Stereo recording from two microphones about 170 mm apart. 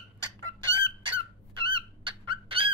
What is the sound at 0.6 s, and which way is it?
Fowl, 30° right (ahead or behind).